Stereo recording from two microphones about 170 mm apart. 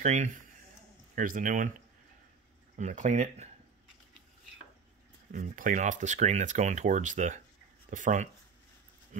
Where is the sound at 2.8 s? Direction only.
45° right (ahead or behind).